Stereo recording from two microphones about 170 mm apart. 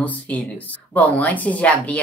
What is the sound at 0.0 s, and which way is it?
Speech, 10° left (ahead or behind).